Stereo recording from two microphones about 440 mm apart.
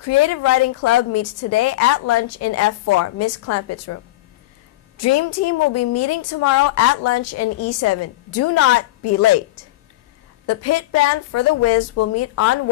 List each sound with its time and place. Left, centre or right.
0.0 s a woman's voice: left
10.4 s a woman's voice: left